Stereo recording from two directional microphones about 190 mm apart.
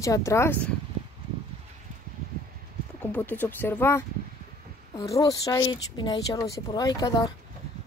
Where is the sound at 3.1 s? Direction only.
10° left (ahead or behind).